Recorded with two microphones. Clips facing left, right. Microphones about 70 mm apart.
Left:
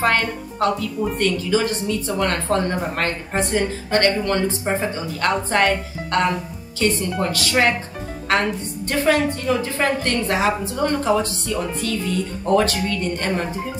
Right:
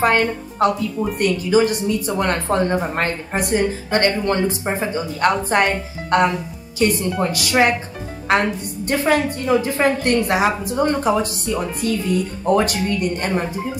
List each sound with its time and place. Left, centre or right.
0.0 s speech: right